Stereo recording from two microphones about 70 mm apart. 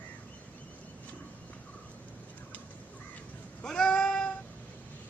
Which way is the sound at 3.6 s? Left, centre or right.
Centre.